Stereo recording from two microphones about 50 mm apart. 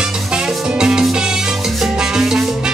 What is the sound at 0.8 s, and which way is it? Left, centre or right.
Music, centre.